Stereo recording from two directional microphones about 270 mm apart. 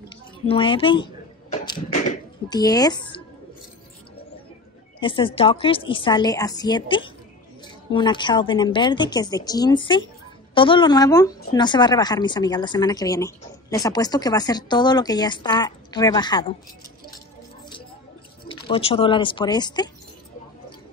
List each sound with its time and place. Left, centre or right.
0.5 s a sound: centre
2.5 s speech: centre
5.0 s a woman's voice: centre
18.5 s speech: left